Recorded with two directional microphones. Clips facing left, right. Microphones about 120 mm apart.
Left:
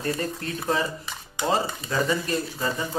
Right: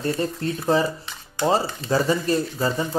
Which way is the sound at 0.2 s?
30° right (ahead or behind).